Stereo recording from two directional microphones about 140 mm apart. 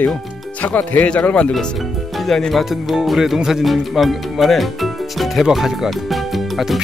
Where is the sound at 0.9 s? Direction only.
10° left (ahead or behind).